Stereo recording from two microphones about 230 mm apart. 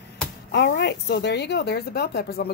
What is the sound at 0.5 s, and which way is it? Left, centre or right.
Speech, left.